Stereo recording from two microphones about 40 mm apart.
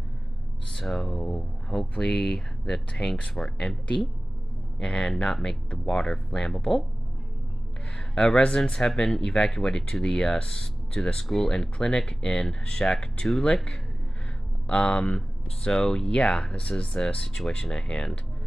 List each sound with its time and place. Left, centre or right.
0.7 s speech: centre
4.7 s speech: centre
8.1 s speech: centre
12.8 s speech: centre
14.7 s speech: left
15.1 s speech: centre